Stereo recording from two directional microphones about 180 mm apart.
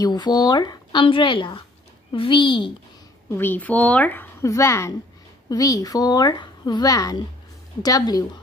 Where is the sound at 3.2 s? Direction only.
10° left (ahead or behind).